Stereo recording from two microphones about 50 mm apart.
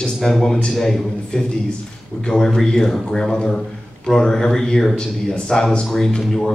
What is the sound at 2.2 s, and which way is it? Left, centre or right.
A man's voice, centre.